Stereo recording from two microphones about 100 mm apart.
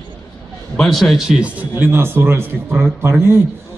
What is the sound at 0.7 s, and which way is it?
A man's voice, 5° left (ahead or behind).